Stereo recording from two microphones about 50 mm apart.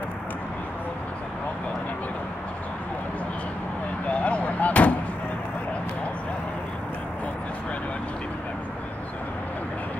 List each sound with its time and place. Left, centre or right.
4.1 s artillery fire: left